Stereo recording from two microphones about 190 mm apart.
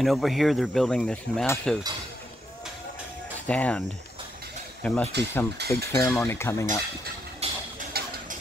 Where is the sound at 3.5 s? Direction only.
5° left (ahead or behind).